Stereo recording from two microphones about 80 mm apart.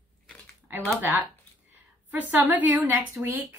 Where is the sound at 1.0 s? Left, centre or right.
Right.